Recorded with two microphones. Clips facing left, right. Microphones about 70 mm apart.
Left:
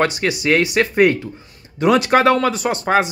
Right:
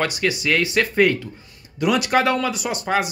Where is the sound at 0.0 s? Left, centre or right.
Left.